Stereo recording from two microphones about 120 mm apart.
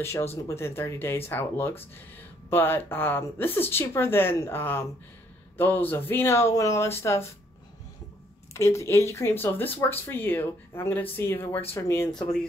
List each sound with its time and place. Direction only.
0.0 s speech: 20° left (ahead or behind)
8.5 s speech: 25° left (ahead or behind)